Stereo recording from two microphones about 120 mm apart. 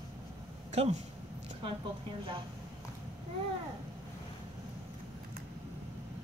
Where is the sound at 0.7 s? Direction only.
70° right (ahead or behind).